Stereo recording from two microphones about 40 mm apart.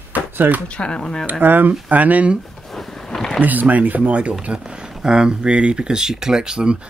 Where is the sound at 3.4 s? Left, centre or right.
Right.